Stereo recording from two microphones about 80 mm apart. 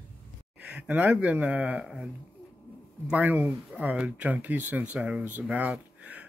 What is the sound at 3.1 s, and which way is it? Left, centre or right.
Speech, right.